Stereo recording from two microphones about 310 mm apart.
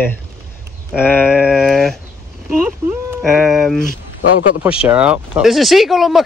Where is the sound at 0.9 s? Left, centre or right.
Centre.